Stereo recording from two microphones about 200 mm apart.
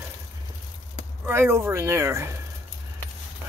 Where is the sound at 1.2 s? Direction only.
10° right (ahead or behind).